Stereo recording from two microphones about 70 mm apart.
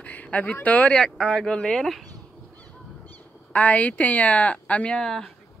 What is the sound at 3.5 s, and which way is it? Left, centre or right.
Speech, left.